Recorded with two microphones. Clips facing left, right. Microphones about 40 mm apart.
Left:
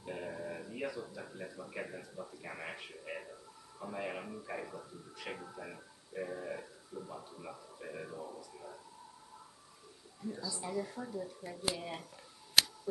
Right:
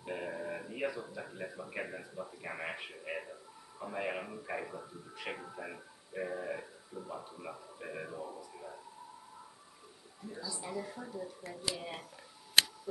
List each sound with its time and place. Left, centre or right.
0.0 s a man's voice: centre
10.2 s a man's voice: centre